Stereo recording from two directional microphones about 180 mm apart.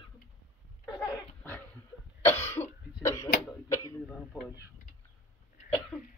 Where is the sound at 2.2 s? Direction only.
10° left (ahead or behind).